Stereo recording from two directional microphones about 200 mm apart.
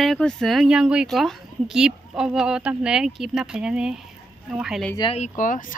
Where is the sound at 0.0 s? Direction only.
Centre (ahead or behind).